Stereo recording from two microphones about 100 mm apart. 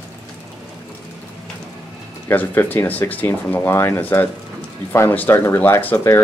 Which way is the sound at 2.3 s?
20° left (ahead or behind).